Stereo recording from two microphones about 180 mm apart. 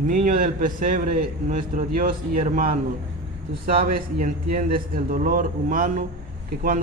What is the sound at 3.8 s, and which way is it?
A man's voice, 45° right (ahead or behind).